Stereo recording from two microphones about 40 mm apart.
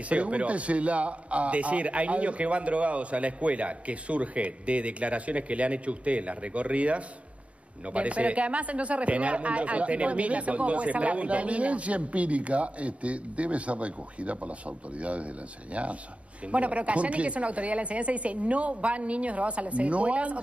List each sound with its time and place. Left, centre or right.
0.1 s speech: right